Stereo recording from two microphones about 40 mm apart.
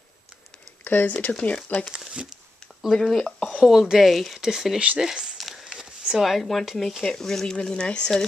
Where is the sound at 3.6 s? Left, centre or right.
Centre.